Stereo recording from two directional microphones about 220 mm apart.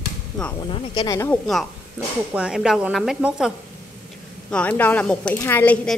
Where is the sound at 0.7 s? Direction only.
20° left (ahead or behind).